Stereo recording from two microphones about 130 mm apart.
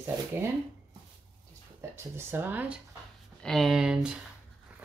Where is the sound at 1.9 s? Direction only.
20° right (ahead or behind).